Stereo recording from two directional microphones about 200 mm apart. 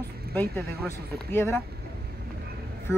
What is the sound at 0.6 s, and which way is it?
Speech, 50° right (ahead or behind).